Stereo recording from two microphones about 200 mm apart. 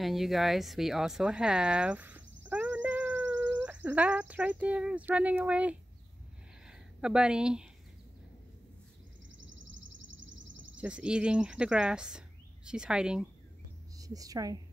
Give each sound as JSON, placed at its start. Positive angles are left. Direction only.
{"t": 0.0, "sound": "speech", "side_deg": 0}
{"t": 2.5, "sound": "cat", "side_deg": -10}
{"t": 6.7, "sound": "a sound", "side_deg": -5}
{"t": 9.4, "sound": "bird", "side_deg": -70}
{"t": 10.8, "sound": "speech", "side_deg": -5}
{"t": 13.9, "sound": "a woman's voice", "side_deg": -15}